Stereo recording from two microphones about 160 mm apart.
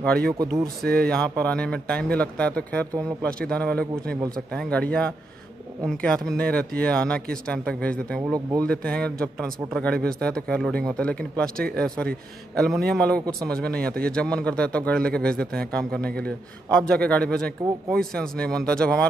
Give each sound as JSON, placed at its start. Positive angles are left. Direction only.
{"t": 0.4, "sound": "speech", "side_deg": -20}
{"t": 0.9, "sound": "speech", "side_deg": 5}